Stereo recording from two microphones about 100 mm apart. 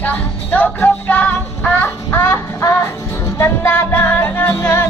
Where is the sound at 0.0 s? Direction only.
15° left (ahead or behind).